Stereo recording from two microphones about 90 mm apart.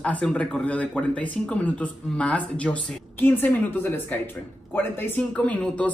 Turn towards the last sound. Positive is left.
turn(degrees=15)  # may be behind; listen again after turning